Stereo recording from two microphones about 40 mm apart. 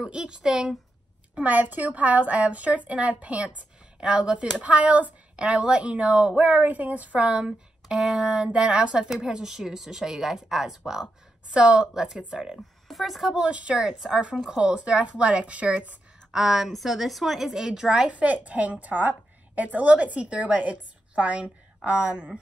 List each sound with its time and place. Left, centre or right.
0.0 s speech: right
1.3 s a woman's voice: right
7.2 s speech: right
11.5 s speech: right
11.9 s speech: centre
12.8 s a woman's voice: centre
13.4 s speech: right
13.7 s a woman's voice: centre; by 16.0 s right
16.3 s a woman's voice: centre
18.1 s a woman's voice: right